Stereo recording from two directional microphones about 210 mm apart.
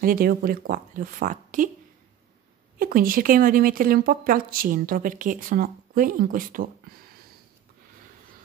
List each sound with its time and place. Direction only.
0.0 s speech: 45° right (ahead or behind)
2.8 s speech: 45° right (ahead or behind)